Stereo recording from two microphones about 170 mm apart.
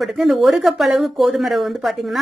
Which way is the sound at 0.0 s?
Centre (ahead or behind).